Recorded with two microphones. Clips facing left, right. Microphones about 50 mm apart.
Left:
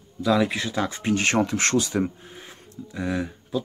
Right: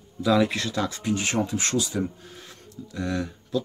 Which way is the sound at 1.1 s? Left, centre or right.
Left.